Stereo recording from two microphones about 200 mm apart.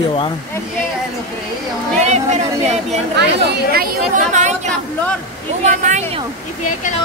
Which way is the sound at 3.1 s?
55° right (ahead or behind).